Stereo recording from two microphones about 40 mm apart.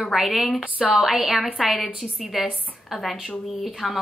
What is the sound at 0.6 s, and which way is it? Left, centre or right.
Speech, right.